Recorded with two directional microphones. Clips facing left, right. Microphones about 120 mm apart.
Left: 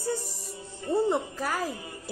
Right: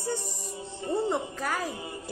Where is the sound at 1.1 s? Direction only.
Centre (ahead or behind).